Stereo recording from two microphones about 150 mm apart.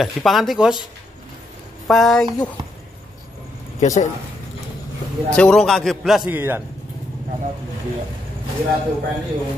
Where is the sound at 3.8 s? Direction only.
55° left (ahead or behind).